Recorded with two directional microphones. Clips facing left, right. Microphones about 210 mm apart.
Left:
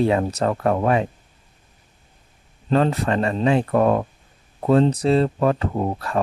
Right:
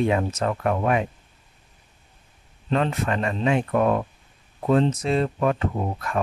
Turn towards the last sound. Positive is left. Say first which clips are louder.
# left 4 dB
turn(degrees=35)  # may be behind; listen again after turning